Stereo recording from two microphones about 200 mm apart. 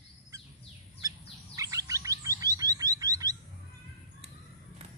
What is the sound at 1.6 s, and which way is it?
Chirp, 15° right (ahead or behind).